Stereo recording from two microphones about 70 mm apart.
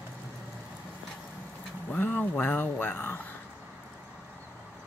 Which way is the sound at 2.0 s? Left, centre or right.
Left.